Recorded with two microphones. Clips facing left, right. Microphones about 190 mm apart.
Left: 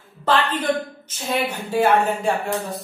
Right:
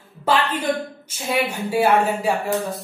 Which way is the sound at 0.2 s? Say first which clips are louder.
Even; 10° right (ahead or behind).